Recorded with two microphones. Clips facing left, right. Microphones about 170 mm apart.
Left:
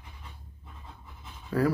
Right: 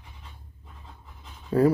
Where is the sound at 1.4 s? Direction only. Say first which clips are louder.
Right 6 dB; 25° right (ahead or behind).